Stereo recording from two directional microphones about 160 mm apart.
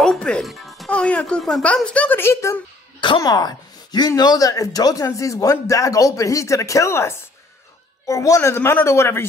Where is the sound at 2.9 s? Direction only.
30° left (ahead or behind).